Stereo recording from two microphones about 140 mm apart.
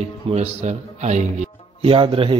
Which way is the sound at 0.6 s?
55° right (ahead or behind).